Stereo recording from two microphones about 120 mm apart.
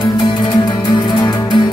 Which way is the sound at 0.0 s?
40° left (ahead or behind).